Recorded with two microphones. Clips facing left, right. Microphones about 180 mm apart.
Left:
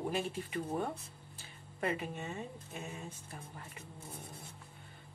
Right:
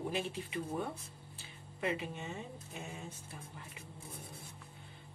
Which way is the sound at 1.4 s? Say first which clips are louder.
Left 1 dB; 45° left (ahead or behind).